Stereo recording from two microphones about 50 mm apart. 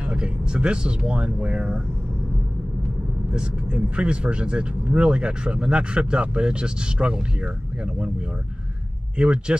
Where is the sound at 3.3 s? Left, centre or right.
Right.